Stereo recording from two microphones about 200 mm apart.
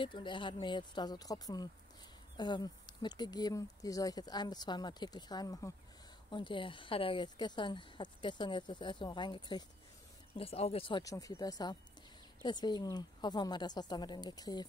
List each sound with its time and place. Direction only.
0.0 s speech: 25° left (ahead or behind)